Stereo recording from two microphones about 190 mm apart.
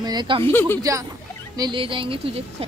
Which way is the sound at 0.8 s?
15° right (ahead or behind).